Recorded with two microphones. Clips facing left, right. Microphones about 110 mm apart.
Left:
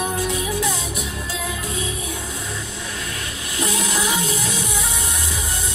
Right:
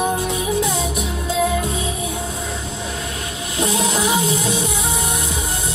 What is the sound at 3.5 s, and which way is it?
Music, 25° right (ahead or behind).